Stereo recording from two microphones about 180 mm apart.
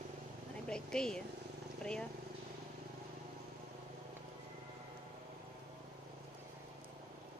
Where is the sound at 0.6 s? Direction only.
5° left (ahead or behind).